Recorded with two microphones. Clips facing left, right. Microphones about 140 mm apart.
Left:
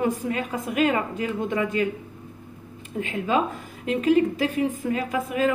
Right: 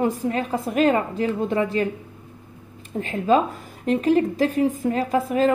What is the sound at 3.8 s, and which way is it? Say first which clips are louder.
A woman's voice: right 1 dB; 40° right (ahead or behind).